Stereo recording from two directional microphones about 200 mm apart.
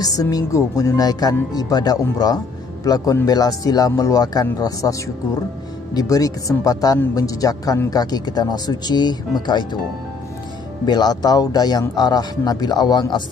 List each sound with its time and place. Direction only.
0.0 s speech: 20° left (ahead or behind)
10.9 s speech: 20° left (ahead or behind)